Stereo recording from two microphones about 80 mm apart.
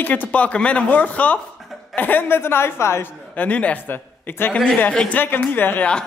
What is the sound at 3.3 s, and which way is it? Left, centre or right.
A man's voice, centre.